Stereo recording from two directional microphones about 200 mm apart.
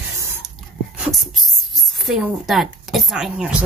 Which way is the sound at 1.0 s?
Centre (ahead or behind).